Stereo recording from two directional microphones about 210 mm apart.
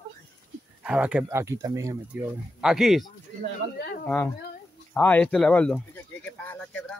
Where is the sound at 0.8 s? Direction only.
5° right (ahead or behind).